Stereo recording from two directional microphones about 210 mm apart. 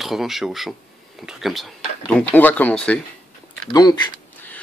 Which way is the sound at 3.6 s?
20° left (ahead or behind).